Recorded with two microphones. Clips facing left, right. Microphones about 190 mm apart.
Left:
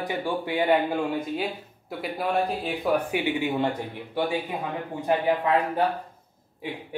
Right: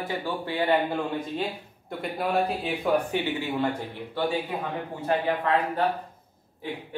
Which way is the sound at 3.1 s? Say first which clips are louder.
Left 2 dB; 15° left (ahead or behind).